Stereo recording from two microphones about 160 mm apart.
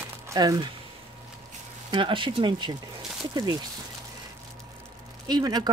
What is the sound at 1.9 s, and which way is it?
Speech, 30° right (ahead or behind).